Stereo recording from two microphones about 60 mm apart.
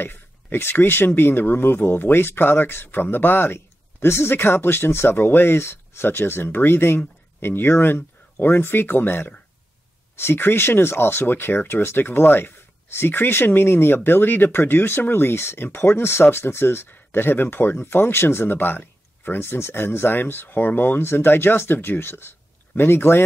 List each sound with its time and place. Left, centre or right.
0.0 s speech: left